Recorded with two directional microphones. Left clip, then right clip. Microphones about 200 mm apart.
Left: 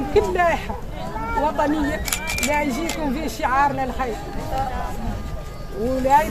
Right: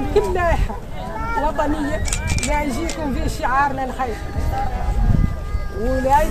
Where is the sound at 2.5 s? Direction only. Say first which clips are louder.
Right 1 dB; centre (ahead or behind).